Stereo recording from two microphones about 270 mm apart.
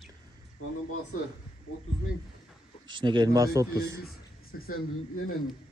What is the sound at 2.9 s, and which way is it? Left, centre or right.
A man's voice, centre.